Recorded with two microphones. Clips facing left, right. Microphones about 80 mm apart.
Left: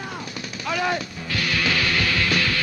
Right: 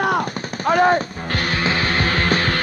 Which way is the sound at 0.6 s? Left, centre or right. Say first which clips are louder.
Right 9 dB; right.